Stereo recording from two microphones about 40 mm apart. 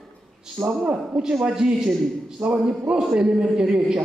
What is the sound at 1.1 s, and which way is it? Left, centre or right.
A man's voice, centre.